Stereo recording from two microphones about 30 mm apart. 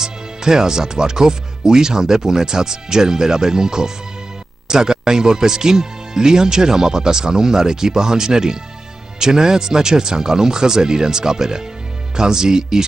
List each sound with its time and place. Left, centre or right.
0.0 s speech: centre